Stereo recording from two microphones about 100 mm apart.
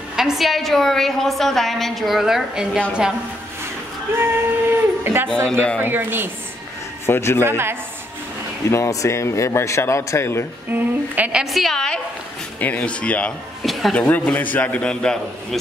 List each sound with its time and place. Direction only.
0.1 s a woman's voice: 5° right (ahead or behind)
5.0 s speech: 25° right (ahead or behind)
5.3 s a man's voice: 10° left (ahead or behind)
5.8 s speech: 20° right (ahead or behind)
7.1 s a man's voice: 25° left (ahead or behind)
7.4 s speech: 25° right (ahead or behind)
8.6 s a man's voice: 30° left (ahead or behind)
10.7 s a woman's voice: 15° right (ahead or behind)
11.4 s a woman's voice: centre (ahead or behind)
13.6 s a sound: centre (ahead or behind)
13.9 s a man's voice: 15° left (ahead or behind)